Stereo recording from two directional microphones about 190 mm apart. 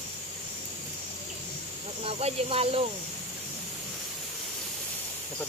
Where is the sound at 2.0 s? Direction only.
30° right (ahead or behind).